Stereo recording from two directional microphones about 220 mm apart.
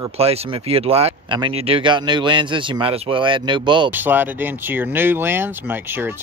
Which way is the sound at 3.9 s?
10° right (ahead or behind).